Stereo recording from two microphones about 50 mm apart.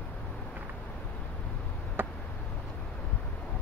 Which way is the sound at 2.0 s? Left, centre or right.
Right.